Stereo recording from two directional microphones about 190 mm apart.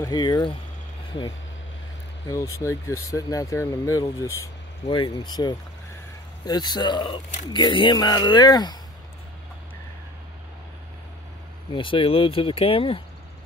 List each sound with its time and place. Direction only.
0.0 s speech: 20° left (ahead or behind)
2.2 s speech: 15° left (ahead or behind)
11.7 s speech: 25° left (ahead or behind)